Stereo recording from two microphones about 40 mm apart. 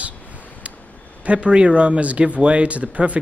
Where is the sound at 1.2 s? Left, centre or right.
Right.